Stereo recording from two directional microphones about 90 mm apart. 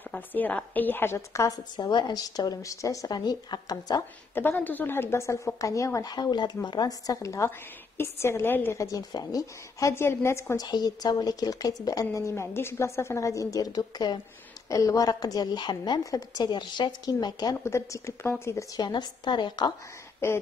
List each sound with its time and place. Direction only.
0.1 s a woman's voice: 20° left (ahead or behind)
1.8 s speech: 55° left (ahead or behind)
4.4 s a woman's voice: 20° left (ahead or behind)
6.1 s a woman's voice: 50° left (ahead or behind); by 8.7 s 25° left (ahead or behind)
8.7 s a woman's voice: 40° left (ahead or behind)
10.5 s speech: 45° left (ahead or behind)
14.7 s speech: 40° left (ahead or behind); by 16.0 s 55° left (ahead or behind)
16.0 s speech: 45° left (ahead or behind)
17.6 s a woman's voice: 30° left (ahead or behind)
18.8 s a woman's voice: 55° left (ahead or behind)
20.2 s a woman's voice: 30° left (ahead or behind)